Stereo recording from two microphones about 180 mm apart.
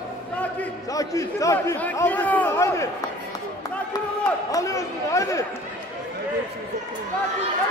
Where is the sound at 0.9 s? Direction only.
20° left (ahead or behind).